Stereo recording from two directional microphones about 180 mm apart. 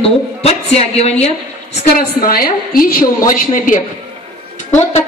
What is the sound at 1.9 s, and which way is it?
A woman's voice, 55° left (ahead or behind).